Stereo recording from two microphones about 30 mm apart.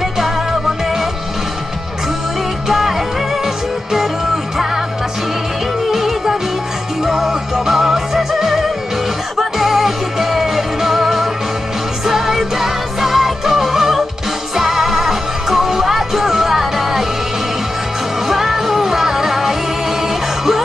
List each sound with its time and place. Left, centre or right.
5.9 s music: centre
18.3 s music: centre